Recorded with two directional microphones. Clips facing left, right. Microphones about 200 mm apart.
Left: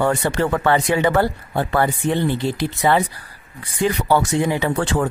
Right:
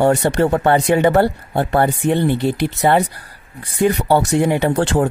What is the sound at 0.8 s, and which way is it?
Speech, 60° right (ahead or behind).